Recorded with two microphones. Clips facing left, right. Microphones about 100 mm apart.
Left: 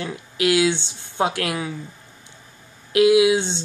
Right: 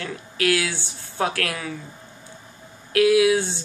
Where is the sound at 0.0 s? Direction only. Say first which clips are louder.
Left 2 dB; 20° left (ahead or behind).